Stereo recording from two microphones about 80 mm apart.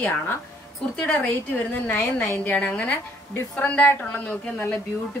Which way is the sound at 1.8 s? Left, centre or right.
Left.